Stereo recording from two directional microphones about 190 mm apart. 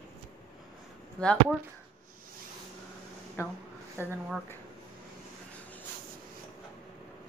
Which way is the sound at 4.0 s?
10° right (ahead or behind).